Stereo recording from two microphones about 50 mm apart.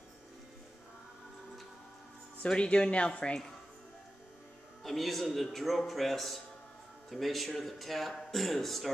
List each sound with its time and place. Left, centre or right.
2.4 s speech: left
4.8 s a man's voice: centre